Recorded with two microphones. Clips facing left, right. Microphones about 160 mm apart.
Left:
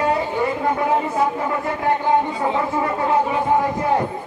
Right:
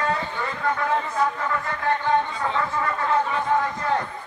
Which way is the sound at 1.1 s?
20° left (ahead or behind).